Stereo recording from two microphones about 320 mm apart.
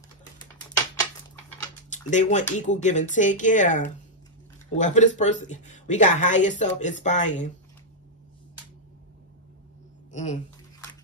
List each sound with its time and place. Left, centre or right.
1.9 s speech: left
10.1 s speech: left